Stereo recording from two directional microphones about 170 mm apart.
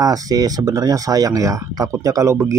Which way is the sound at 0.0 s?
20° right (ahead or behind).